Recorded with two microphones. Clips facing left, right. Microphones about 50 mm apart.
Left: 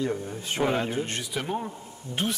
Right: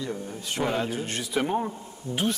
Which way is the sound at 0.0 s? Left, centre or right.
Left.